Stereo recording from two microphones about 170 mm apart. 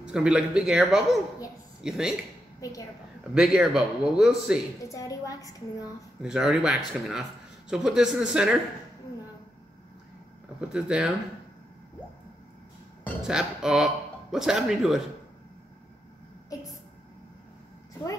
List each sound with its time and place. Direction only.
0.0 s a man's voice: 5° right (ahead or behind)
2.6 s a woman's voice: 20° left (ahead or behind)
3.3 s a man's voice: 5° right (ahead or behind)
4.8 s a woman's voice: 20° left (ahead or behind)
6.2 s a man's voice: 5° right (ahead or behind)
10.7 s a man's voice: 5° right (ahead or behind)
13.2 s a man's voice: 5° right (ahead or behind)